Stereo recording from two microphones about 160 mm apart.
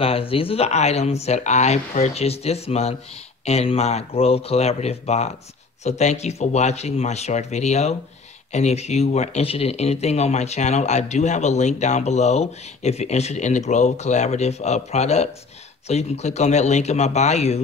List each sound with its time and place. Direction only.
0.0 s speech: 35° left (ahead or behind)